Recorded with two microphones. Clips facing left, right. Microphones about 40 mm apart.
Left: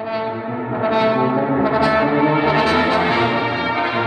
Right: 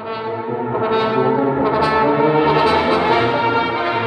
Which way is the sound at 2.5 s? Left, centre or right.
Centre.